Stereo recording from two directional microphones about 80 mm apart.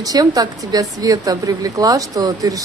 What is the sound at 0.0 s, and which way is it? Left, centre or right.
Speech, right.